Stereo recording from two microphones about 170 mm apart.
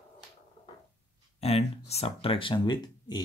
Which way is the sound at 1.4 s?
35° left (ahead or behind).